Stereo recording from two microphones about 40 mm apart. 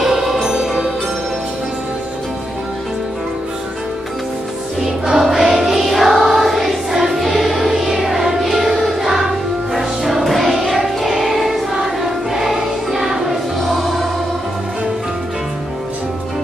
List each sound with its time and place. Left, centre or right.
0.0 s music: centre
0.5 s music: centre
5.1 s music: centre
8.8 s choir: centre
9.8 s music: centre
11.1 s choir: centre
13.6 s music: centre